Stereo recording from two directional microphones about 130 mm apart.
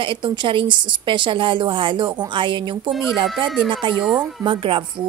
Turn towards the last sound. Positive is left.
turn(degrees=-40)  # may be behind; listen again after turning